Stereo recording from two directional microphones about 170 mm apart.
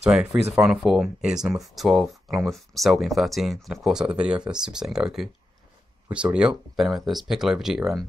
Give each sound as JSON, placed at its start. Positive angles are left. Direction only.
{"t": 0.0, "sound": "speech", "side_deg": -5}
{"t": 6.3, "sound": "speech", "side_deg": -5}